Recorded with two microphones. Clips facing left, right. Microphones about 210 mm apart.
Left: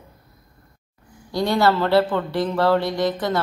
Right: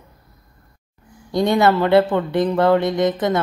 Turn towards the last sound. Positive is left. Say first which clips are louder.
# right 4 dB
turn(degrees=-20)  # may be behind; listen again after turning